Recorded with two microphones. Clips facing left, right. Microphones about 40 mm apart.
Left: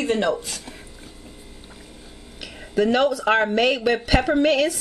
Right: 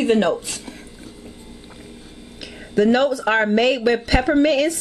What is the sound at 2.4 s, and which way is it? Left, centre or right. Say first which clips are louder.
Speech: right 3 dB; centre.